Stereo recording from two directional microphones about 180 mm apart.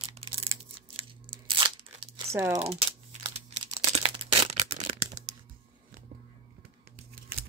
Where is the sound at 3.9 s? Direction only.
35° right (ahead or behind).